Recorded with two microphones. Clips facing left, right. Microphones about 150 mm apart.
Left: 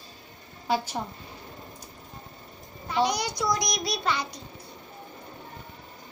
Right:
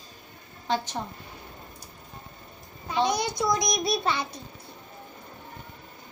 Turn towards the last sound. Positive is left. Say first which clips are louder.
# right 2 dB
turn(degrees=-25)  # may be behind; listen again after turning